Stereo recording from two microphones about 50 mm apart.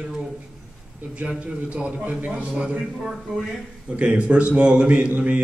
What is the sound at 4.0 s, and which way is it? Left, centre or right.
A man's voice, right.